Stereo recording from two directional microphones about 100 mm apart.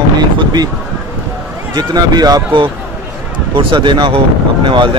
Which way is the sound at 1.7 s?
40° right (ahead or behind).